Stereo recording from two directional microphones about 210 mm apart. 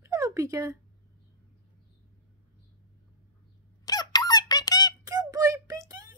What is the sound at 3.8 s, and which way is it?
Squeak, 20° left (ahead or behind).